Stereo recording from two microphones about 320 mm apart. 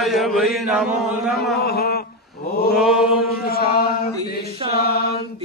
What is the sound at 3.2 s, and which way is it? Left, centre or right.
Chant, left.